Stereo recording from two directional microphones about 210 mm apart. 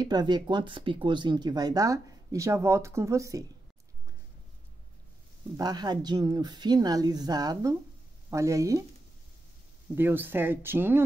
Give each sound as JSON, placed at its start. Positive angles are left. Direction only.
{"t": 0.0, "sound": "speech", "side_deg": -20}
{"t": 5.6, "sound": "speech", "side_deg": -20}
{"t": 9.9, "sound": "speech", "side_deg": -10}